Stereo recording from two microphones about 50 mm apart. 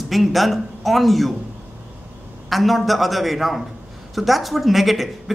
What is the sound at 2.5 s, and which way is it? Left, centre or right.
Speech, centre.